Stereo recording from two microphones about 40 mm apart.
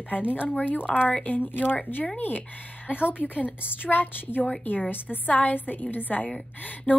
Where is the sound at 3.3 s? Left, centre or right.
Right.